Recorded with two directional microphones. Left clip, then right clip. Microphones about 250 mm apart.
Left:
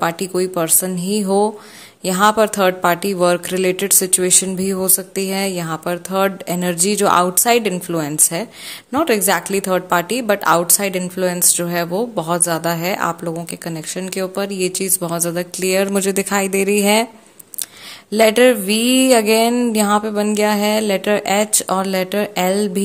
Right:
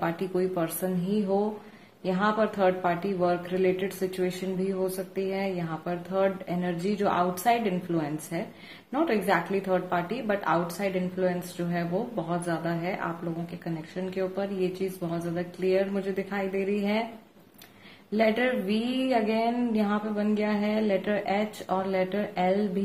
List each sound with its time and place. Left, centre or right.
0.0 s speech: left
18.1 s speech: left